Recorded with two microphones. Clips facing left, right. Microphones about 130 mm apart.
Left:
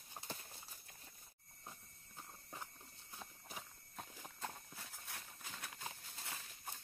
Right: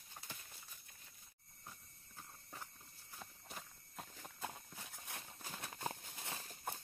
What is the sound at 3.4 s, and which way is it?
Walk, 5° left (ahead or behind).